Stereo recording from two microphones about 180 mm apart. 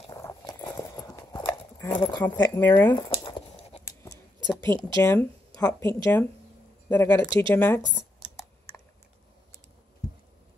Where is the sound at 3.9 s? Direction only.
15° left (ahead or behind).